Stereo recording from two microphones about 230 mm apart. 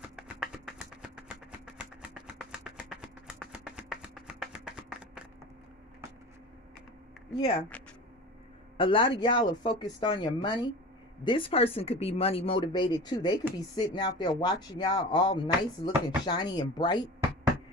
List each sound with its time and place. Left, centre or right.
0.1 s a sound: centre
7.3 s speech: centre
8.7 s speech: left